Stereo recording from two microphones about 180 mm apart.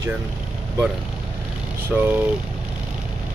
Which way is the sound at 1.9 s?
Centre (ahead or behind).